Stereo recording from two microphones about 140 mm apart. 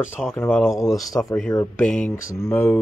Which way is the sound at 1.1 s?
25° left (ahead or behind).